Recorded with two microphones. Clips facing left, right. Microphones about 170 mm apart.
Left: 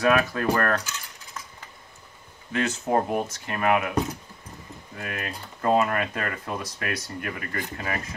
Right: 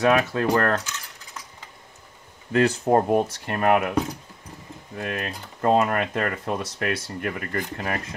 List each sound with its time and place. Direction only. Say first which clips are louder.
0.0 s coin: right 2 dB; 25° right (ahead or behind)
2.5 s speech: right 5 dB; 35° right (ahead or behind)
4.9 s speech: right 4 dB; 30° right (ahead or behind)